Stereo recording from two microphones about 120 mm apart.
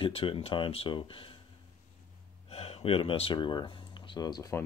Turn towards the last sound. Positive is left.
turn(degrees=25)  # may be behind; listen again after turning